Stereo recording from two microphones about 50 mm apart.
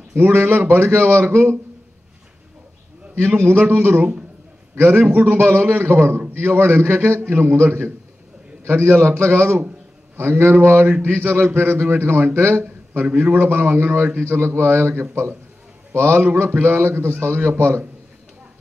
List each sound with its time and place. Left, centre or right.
0.1 s a man's voice: right
3.2 s a man's voice: right
5.4 s a man's voice: right
12.6 s a sound: right
13.2 s a man's voice: right